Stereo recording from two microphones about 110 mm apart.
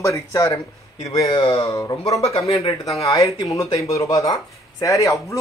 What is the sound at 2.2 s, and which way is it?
Speech, 65° left (ahead or behind).